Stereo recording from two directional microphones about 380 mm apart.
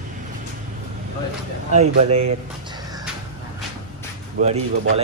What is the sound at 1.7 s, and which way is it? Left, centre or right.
Speech, centre.